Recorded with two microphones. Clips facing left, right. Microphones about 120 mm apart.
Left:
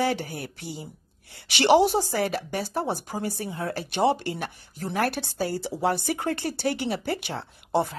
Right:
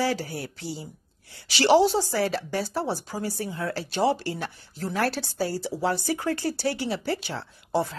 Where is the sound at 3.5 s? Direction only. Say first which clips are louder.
Even; 20° left (ahead or behind).